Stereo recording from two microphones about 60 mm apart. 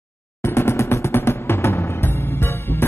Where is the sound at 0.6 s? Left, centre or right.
Left.